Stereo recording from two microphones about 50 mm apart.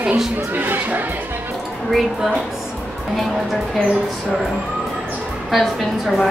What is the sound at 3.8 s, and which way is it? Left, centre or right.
Speech, right.